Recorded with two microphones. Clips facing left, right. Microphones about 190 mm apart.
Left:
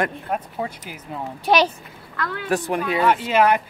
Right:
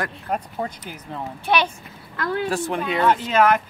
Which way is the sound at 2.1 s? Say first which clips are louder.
Right 5 dB; 25° right (ahead or behind).